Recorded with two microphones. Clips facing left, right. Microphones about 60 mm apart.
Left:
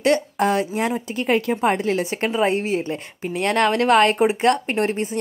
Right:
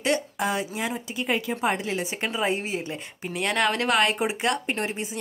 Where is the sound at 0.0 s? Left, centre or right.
Left.